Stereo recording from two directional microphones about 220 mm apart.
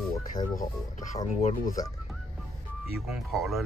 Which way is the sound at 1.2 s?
30° left (ahead or behind).